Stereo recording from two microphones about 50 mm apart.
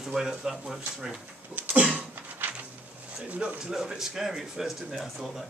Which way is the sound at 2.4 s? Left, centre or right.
Right.